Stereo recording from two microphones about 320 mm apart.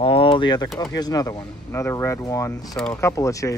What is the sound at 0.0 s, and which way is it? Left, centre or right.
Speech, centre.